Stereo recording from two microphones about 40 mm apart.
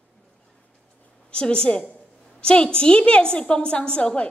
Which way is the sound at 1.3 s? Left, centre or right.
Left.